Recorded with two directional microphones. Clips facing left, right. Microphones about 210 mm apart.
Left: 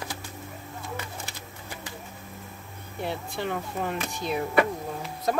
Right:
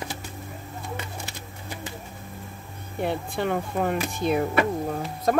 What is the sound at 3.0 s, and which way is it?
Speech, 55° right (ahead or behind).